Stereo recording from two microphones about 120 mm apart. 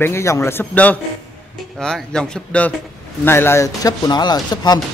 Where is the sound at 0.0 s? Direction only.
20° left (ahead or behind).